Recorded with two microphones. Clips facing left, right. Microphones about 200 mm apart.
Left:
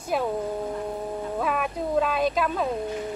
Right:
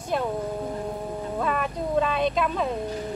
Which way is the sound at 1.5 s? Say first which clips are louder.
Even; 5° left (ahead or behind).